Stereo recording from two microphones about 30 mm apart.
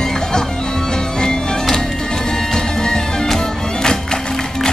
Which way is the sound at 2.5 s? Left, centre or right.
Left.